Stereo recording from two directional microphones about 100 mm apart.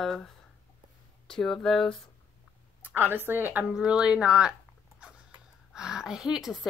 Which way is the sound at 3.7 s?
10° right (ahead or behind).